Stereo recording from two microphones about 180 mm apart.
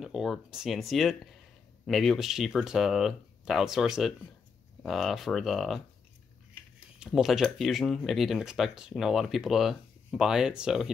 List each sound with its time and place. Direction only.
0.0 s speech: centre (ahead or behind)
7.0 s speech: 5° right (ahead or behind)